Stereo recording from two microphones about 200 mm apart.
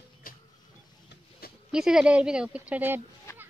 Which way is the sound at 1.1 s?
50° left (ahead or behind).